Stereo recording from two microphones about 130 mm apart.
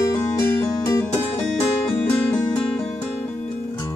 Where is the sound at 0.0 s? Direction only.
15° left (ahead or behind).